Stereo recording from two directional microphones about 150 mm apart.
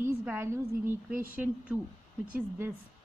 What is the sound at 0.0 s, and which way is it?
A woman's voice, 15° right (ahead or behind).